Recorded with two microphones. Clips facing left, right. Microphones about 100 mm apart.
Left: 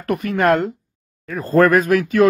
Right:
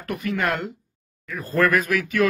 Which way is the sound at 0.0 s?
45° left (ahead or behind).